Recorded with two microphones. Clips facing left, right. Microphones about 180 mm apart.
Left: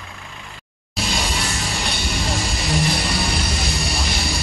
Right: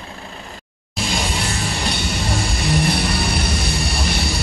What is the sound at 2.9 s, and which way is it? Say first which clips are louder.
Music: right 2 dB; 60° right (ahead or behind).